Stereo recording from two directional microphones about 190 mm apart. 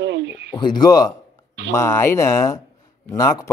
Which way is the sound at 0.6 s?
20° left (ahead or behind).